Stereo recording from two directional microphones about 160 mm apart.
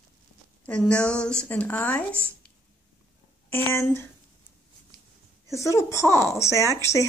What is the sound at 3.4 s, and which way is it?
Speech, 15° left (ahead or behind).